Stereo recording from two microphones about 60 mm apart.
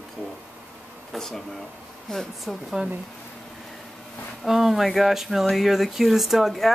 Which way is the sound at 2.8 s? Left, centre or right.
Centre.